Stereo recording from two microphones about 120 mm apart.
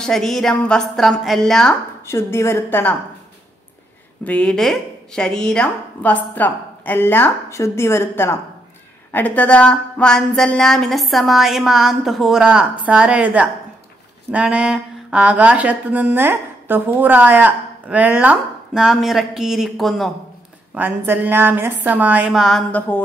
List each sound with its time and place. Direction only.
0.0 s speech: 5° left (ahead or behind)
2.0 s a woman's voice: 20° left (ahead or behind)
4.2 s speech: 10° left (ahead or behind)
20.7 s speech: 15° right (ahead or behind)
22.7 s speech: 15° left (ahead or behind)